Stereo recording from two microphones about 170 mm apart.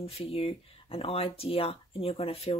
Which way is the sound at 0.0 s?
35° left (ahead or behind).